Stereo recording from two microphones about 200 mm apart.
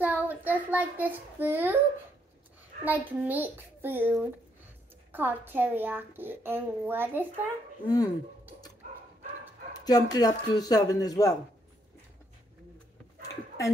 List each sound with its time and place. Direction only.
0.0 s a child's voice: 10° right (ahead or behind)
2.8 s a woman's voice: 10° right (ahead or behind)
7.8 s speech: 20° left (ahead or behind)
9.8 s speech: 20° left (ahead or behind)